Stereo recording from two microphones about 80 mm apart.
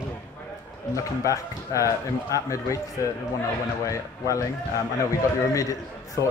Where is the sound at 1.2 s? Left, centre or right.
Left.